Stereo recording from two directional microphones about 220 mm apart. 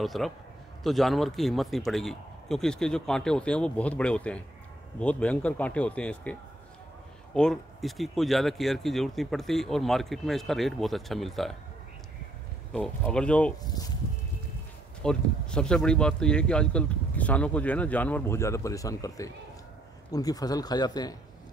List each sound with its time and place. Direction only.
0.0 s speech: centre (ahead or behind)
7.3 s speech: centre (ahead or behind)
12.7 s speech: 5° left (ahead or behind)
13.7 s speech: 15° left (ahead or behind)
15.0 s speech: 5° left (ahead or behind)